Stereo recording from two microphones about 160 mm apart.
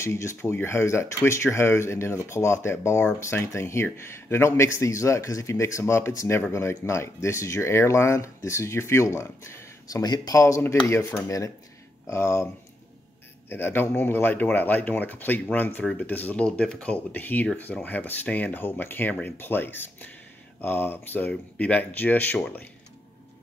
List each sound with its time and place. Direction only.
0.0 s speech: 15° left (ahead or behind)
13.5 s speech: 15° left (ahead or behind)